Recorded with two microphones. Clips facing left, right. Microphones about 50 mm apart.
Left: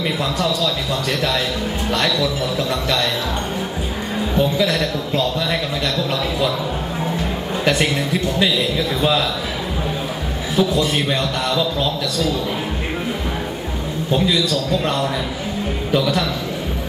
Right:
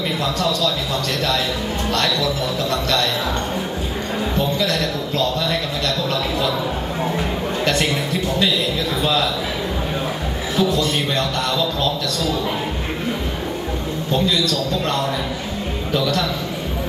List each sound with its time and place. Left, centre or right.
0.4 s a man's voice: centre
2.0 s a man's voice: centre
4.4 s a man's voice: centre
7.6 s a sound: centre
10.5 s a man's voice: centre
14.1 s a man's voice: centre